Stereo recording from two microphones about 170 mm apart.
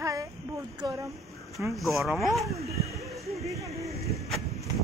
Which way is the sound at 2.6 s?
20° right (ahead or behind).